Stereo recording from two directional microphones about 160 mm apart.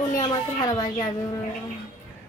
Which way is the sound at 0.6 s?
25° left (ahead or behind).